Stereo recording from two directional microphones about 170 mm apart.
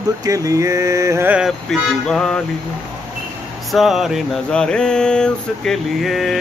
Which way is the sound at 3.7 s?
Centre (ahead or behind).